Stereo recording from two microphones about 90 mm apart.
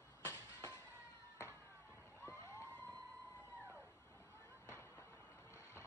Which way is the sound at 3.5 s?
25° right (ahead or behind).